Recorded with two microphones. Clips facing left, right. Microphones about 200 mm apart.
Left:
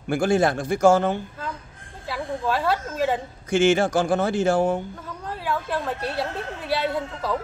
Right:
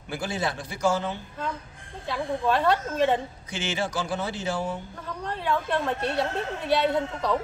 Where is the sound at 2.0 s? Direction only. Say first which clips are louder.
Right 1 dB; 5° left (ahead or behind).